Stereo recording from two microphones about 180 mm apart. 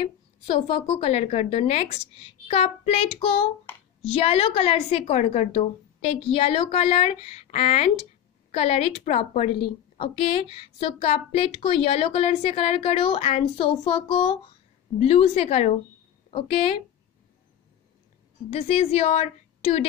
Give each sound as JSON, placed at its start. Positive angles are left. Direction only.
{"t": 0.5, "sound": "a woman's voice", "side_deg": 35}
{"t": 18.5, "sound": "a woman's voice", "side_deg": 35}